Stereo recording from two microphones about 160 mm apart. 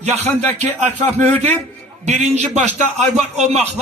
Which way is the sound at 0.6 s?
45° right (ahead or behind).